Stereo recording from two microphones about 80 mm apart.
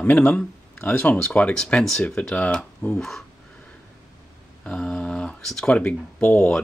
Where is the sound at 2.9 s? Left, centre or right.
Centre.